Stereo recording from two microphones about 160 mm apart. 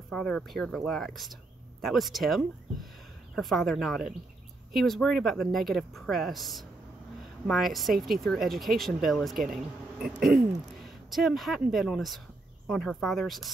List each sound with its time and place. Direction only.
0.1 s speech: 5° left (ahead or behind)